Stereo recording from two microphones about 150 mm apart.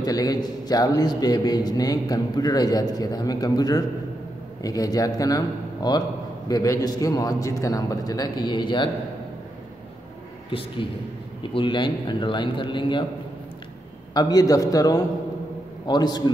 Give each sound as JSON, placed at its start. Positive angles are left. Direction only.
{"t": 0.0, "sound": "a man's voice", "side_deg": 25}
{"t": 10.5, "sound": "a man's voice", "side_deg": 35}
{"t": 14.1, "sound": "a man's voice", "side_deg": 25}